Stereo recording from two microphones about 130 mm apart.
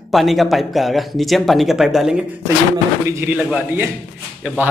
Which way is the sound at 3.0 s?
20° right (ahead or behind).